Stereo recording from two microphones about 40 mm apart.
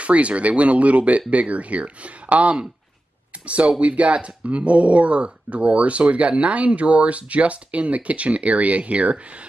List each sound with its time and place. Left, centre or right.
0.0 s speech: right
3.8 s speech: right